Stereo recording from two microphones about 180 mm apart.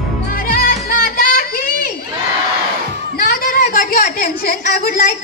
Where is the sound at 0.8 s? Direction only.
55° left (ahead or behind).